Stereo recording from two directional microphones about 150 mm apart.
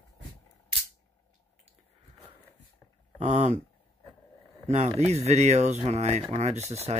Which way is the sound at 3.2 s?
50° right (ahead or behind).